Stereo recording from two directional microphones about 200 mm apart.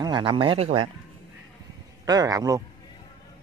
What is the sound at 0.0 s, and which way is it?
Speech, 25° right (ahead or behind).